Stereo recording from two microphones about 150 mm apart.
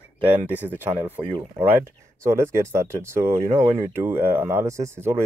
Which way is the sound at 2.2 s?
20° right (ahead or behind).